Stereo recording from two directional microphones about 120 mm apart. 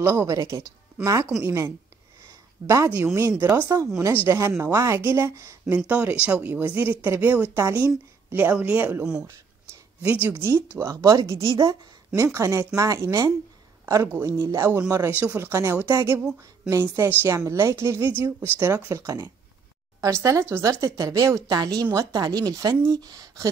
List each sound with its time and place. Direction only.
0.0 s speech: 20° right (ahead or behind)
5.7 s a woman's voice: 10° right (ahead or behind)
10.2 s speech: 20° right (ahead or behind)